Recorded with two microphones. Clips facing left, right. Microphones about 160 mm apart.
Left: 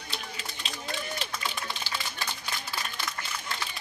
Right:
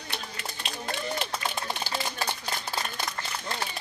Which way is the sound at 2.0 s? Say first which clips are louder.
Right 5 dB; 50° right (ahead or behind).